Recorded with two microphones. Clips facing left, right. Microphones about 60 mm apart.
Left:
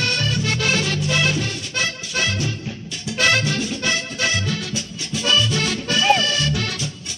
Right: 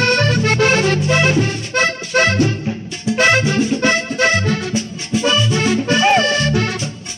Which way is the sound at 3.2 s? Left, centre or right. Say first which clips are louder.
Right 5 dB; right.